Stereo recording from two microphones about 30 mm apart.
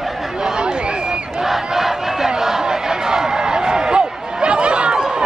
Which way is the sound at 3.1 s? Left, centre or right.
Right.